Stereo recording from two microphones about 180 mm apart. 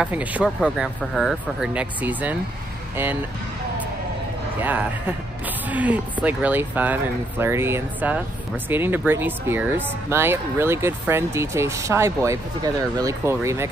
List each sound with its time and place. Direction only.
0.0 s speech: 10° right (ahead or behind)
4.6 s speech: 10° right (ahead or behind)